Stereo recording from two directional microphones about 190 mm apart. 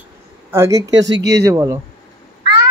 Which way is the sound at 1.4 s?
15° right (ahead or behind).